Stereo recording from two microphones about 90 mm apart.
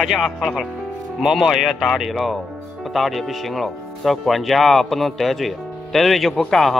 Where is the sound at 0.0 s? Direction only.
Centre (ahead or behind).